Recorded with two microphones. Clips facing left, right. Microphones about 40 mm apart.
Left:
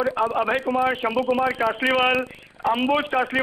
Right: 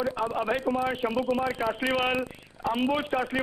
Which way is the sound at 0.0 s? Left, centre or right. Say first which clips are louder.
Left 6 dB; left.